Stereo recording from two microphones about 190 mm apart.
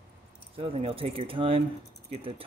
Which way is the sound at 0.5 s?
30° right (ahead or behind).